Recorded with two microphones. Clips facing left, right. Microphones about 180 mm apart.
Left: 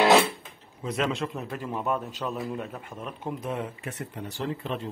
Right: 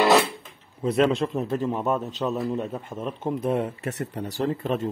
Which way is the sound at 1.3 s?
25° right (ahead or behind).